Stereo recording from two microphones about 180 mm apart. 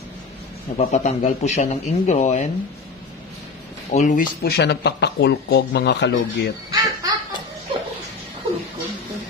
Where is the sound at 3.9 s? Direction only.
45° left (ahead or behind); by 6.5 s 70° left (ahead or behind).